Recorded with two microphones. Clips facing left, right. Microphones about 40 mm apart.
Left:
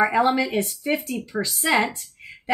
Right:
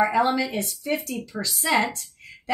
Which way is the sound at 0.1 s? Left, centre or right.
Left.